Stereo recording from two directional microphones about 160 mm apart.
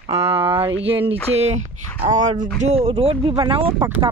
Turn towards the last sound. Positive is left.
turn(degrees=-35)  # may be behind; listen again after turning